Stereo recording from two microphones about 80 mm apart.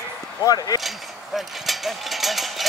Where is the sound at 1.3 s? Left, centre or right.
Centre.